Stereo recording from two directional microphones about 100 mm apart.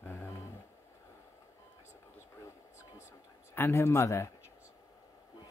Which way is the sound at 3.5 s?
25° left (ahead or behind).